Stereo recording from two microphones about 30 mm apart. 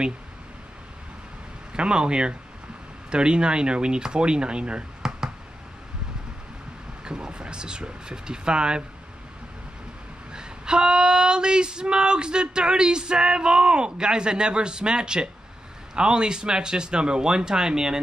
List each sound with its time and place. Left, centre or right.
1.7 s speech: right
5.0 s a sound: centre
7.1 s female singing: right
10.3 s female singing: right